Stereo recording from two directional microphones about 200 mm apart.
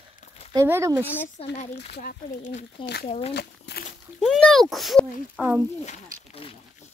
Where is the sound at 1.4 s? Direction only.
30° left (ahead or behind).